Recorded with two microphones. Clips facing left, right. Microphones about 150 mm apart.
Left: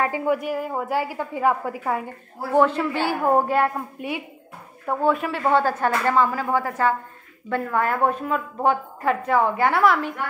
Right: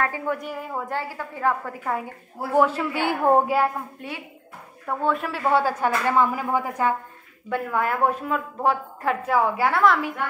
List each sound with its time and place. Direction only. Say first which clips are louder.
0.0 s a woman's voice: left 4 dB; 10° left (ahead or behind)
2.5 s speech: left 2 dB; 5° right (ahead or behind)
3.1 s child singing: right 2 dB; 20° right (ahead or behind)
3.4 s a woman's voice: left 1 dB; 5° right (ahead or behind)
4.0 s a woman's voice: left 6 dB; 10° left (ahead or behind)
5.5 s a woman's voice: left 1 dB; 10° right (ahead or behind)